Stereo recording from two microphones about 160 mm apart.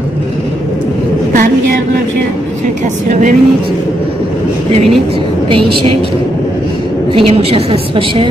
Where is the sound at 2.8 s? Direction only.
50° right (ahead or behind).